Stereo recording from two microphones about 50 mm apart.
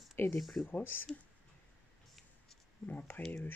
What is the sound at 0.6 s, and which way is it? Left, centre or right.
Speech, left.